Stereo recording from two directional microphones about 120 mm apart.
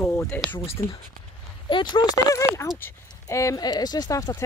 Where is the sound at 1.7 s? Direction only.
40° left (ahead or behind).